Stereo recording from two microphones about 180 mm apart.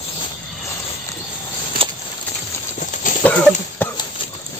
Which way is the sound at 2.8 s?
45° left (ahead or behind).